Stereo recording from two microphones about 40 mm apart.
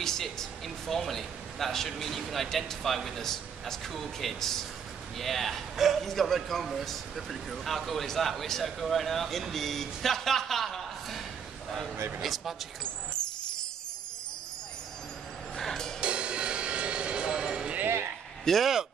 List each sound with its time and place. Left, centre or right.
0.0 s a man's voice: centre
15.5 s music: centre
16.0 s music: right
18.4 s speech: centre